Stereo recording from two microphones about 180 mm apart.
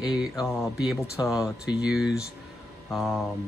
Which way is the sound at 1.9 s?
5° right (ahead or behind).